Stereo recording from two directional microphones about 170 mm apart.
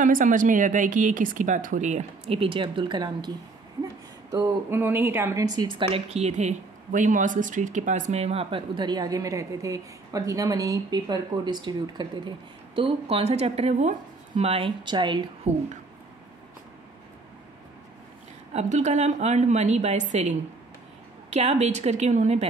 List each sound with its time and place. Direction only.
0.0 s a woman's voice: 50° right (ahead or behind); by 15.2 s 25° right (ahead or behind)
15.5 s speech: 40° right (ahead or behind)
18.5 s a woman's voice: 40° right (ahead or behind)